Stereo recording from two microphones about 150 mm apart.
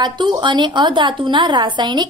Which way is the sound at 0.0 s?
30° right (ahead or behind).